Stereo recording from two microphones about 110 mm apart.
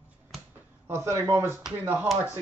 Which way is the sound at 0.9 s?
25° right (ahead or behind).